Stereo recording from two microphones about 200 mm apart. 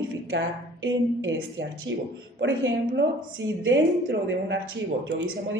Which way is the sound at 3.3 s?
70° right (ahead or behind).